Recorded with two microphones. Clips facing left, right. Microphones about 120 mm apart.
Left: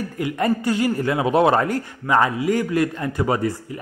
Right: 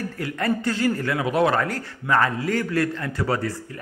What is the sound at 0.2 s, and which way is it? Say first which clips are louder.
A man's voice: left 4 dB; 15° left (ahead or behind).